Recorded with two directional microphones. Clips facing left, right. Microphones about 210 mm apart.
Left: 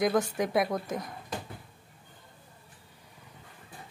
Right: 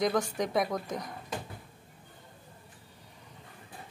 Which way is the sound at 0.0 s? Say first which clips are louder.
Left 2 dB; 5° left (ahead or behind).